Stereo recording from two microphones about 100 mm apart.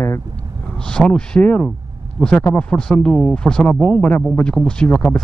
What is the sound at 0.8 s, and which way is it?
Speech, 10° left (ahead or behind).